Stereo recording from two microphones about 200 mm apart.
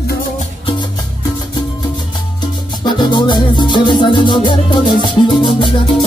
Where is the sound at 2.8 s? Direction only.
20° left (ahead or behind).